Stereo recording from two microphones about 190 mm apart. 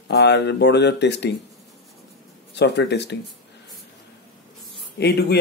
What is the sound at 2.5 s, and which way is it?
Speech, 65° left (ahead or behind).